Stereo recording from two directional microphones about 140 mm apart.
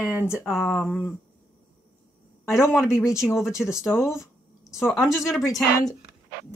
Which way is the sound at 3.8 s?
20° left (ahead or behind).